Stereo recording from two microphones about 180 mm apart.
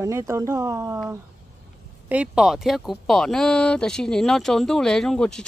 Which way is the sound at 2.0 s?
5° right (ahead or behind).